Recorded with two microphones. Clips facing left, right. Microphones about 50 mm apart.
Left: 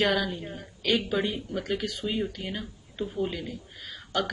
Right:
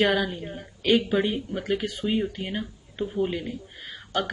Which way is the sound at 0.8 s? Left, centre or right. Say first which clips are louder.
Right 4 dB; centre.